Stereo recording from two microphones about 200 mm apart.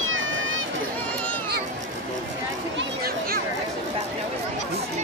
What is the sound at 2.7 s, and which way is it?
Chatter, 50° right (ahead or behind).